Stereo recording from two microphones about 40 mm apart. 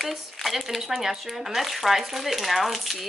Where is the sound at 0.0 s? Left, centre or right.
Centre.